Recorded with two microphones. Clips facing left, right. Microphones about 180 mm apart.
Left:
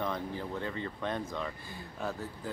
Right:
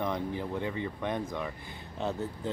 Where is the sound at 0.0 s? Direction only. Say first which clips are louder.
Right 3 dB; 15° right (ahead or behind).